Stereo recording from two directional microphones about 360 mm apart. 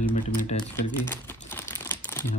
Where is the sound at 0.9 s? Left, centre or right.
Centre.